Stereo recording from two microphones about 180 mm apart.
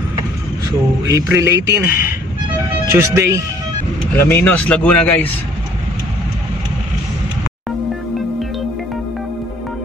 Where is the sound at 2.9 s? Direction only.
15° right (ahead or behind).